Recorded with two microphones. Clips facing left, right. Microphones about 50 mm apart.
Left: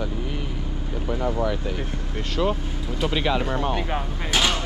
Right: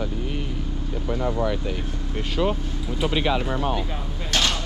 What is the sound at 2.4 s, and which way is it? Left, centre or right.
Speech, centre.